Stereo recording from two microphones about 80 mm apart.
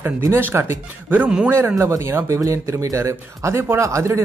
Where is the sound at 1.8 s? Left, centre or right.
Right.